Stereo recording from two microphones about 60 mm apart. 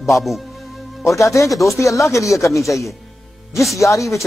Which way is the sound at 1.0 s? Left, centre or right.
Left.